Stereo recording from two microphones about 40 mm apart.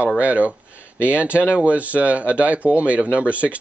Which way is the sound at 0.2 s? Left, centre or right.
Right.